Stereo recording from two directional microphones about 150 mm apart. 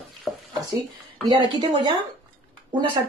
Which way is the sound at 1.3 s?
35° right (ahead or behind).